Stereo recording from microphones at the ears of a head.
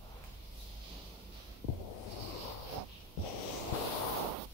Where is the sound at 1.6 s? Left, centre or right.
Left.